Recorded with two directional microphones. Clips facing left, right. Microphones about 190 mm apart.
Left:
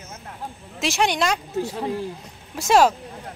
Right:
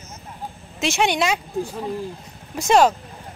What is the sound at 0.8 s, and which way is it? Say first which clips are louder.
Speech: right 1 dB; centre (ahead or behind).